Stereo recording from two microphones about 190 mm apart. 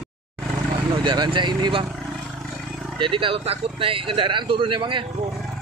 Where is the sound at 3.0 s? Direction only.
25° right (ahead or behind).